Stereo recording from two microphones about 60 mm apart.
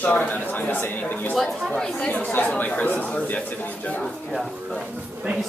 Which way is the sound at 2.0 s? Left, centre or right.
Left.